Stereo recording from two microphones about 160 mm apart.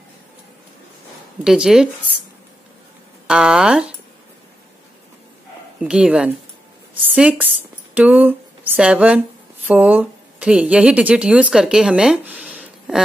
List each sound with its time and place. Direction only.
1.4 s speech: 5° right (ahead or behind)
3.3 s speech: 5° right (ahead or behind)
5.8 s a woman's voice: 5° right (ahead or behind)
7.9 s a sound: 10° right (ahead or behind)
9.7 s a woman's voice: 10° right (ahead or behind)